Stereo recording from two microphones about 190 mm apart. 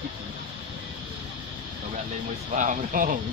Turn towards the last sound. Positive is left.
turn(degrees=-45)  # may be behind; listen again after turning